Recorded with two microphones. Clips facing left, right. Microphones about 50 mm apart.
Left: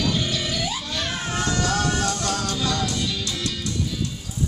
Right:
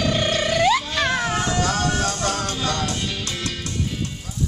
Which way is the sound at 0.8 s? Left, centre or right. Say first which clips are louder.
Right 6 dB; right.